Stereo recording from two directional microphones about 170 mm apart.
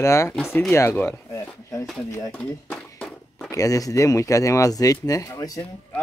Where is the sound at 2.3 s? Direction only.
5° left (ahead or behind).